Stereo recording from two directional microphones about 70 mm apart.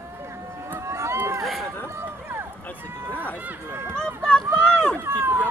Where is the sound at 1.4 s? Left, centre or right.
Centre.